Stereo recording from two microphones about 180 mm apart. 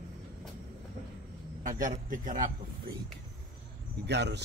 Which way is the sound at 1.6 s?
45° right (ahead or behind).